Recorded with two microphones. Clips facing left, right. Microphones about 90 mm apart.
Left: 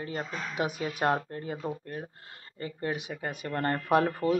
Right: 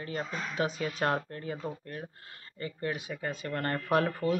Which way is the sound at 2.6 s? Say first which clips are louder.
Left 1 dB; 30° left (ahead or behind).